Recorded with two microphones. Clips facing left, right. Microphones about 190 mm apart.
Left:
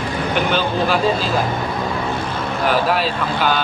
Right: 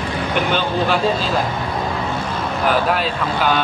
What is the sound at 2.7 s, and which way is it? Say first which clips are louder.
Speech: even; centre (ahead or behind).